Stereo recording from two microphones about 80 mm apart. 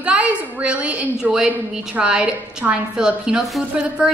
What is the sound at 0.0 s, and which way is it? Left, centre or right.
A woman's voice, centre.